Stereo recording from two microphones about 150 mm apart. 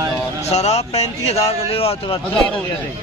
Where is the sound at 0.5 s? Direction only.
45° left (ahead or behind).